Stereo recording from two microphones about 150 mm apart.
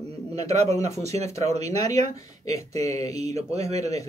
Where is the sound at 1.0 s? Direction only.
45° right (ahead or behind).